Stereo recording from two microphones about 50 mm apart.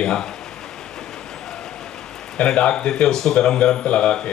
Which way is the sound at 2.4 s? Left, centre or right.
Left.